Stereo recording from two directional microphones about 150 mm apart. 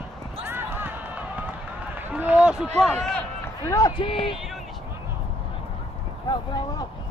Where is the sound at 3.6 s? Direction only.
25° left (ahead or behind).